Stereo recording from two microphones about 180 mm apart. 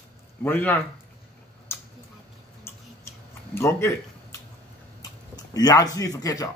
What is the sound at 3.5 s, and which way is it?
Speech, 15° left (ahead or behind).